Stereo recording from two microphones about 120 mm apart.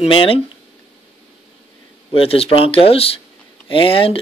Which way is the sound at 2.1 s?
50° left (ahead or behind).